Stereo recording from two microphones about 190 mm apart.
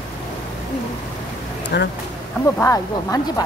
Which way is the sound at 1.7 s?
60° left (ahead or behind).